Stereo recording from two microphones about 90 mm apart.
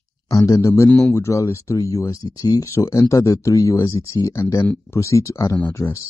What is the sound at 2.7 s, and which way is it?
Speech, 30° left (ahead or behind).